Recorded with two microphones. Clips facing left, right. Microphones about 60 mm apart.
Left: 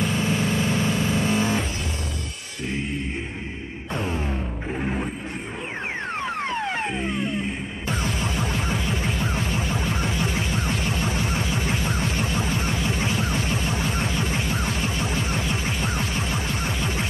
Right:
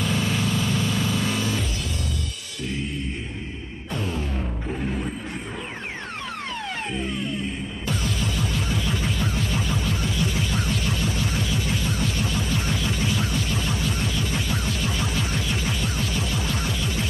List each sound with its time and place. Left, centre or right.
0.0 s vehicle: left
3.9 s music: left
6.2 s music: left